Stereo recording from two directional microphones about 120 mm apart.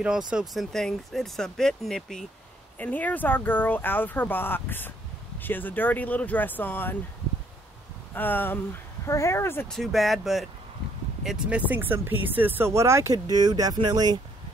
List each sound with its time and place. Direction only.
0.3 s speech: 5° right (ahead or behind); by 7.0 s 15° left (ahead or behind)
8.1 s speech: 15° left (ahead or behind)
9.7 s speech: centre (ahead or behind); by 14.2 s 35° right (ahead or behind)